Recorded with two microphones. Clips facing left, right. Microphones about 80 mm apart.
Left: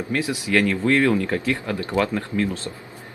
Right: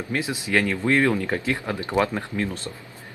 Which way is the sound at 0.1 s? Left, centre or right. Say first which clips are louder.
Left 2 dB; right.